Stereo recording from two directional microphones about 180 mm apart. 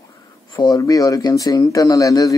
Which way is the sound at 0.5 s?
25° left (ahead or behind).